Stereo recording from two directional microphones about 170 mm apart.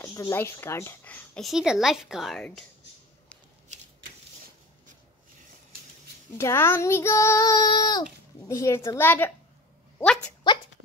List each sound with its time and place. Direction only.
0.0 s speech: 15° left (ahead or behind)
6.3 s child singing: 15° left (ahead or behind)
10.4 s a sound: 25° left (ahead or behind)